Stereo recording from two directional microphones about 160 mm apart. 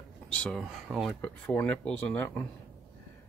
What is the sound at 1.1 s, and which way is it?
Speech, 10° left (ahead or behind).